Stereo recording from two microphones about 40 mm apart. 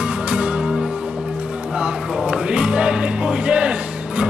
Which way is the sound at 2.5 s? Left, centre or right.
Right.